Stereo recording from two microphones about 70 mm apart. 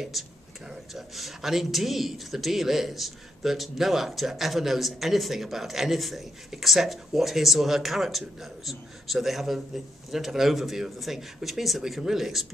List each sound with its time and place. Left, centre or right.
0.2 s speech: centre